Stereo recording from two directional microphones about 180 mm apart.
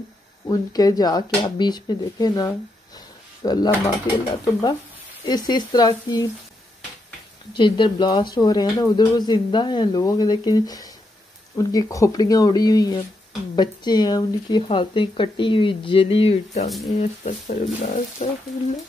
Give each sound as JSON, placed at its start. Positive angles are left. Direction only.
{"t": 0.5, "sound": "speech", "side_deg": 20}
{"t": 5.2, "sound": "speech", "side_deg": 25}
{"t": 7.5, "sound": "speech", "side_deg": 25}
{"t": 16.6, "sound": "speech", "side_deg": 0}
{"t": 17.2, "sound": "speech", "side_deg": 40}